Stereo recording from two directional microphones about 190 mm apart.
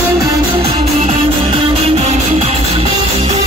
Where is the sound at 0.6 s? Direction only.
30° right (ahead or behind).